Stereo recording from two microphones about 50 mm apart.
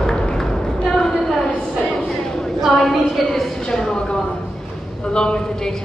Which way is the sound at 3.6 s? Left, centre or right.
Centre.